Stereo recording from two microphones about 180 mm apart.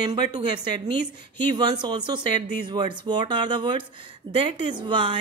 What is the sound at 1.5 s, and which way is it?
Speech, 25° right (ahead or behind).